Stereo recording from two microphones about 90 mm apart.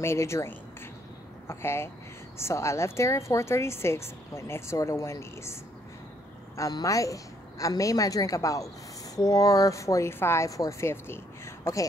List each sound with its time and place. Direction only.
0.0 s a woman's voice: 30° left (ahead or behind)
6.7 s a woman's voice: 40° left (ahead or behind)